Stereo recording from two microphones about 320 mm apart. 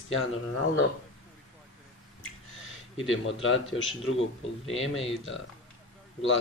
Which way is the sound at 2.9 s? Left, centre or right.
Left.